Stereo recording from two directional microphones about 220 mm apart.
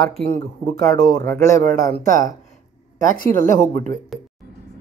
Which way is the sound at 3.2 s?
35° left (ahead or behind).